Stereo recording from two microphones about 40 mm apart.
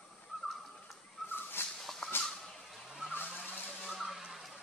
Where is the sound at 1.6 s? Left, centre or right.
Left.